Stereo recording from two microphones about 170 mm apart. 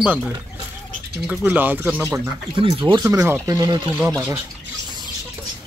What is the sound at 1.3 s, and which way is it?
Speech, 10° right (ahead or behind).